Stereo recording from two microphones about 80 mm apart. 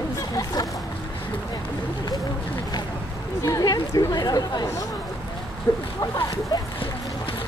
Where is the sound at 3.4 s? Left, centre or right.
Left.